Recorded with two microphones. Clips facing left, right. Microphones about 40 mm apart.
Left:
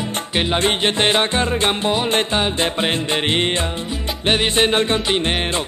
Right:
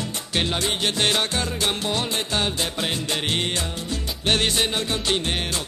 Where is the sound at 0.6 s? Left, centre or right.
Left.